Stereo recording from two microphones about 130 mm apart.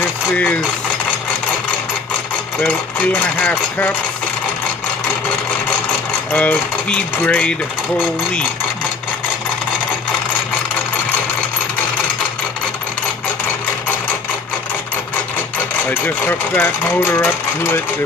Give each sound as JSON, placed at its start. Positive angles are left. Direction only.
{"t": 2.6, "sound": "speech", "side_deg": 15}
{"t": 6.3, "sound": "speech", "side_deg": 10}
{"t": 15.9, "sound": "speech", "side_deg": 15}